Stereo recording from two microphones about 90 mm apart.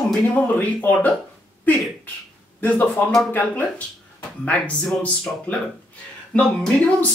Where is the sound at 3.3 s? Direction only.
20° left (ahead or behind).